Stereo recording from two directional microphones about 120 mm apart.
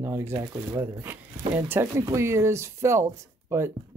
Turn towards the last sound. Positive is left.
turn(degrees=-20)  # may be behind; listen again after turning